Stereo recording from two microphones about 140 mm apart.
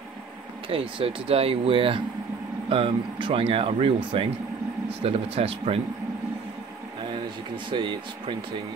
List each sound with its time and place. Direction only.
0.7 s speech: 40° right (ahead or behind)
7.7 s speech: 35° right (ahead or behind)